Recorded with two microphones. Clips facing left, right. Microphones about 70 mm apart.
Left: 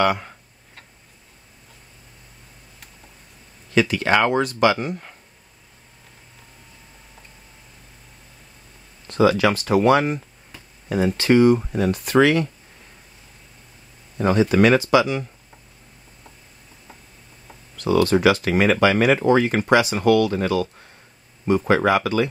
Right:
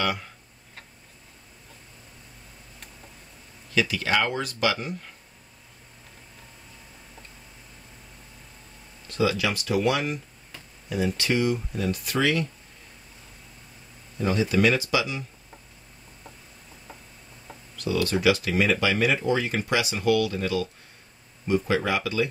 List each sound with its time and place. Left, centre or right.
0.0 s speech: left
3.7 s speech: left
9.1 s speech: left
14.1 s speech: left
17.8 s speech: left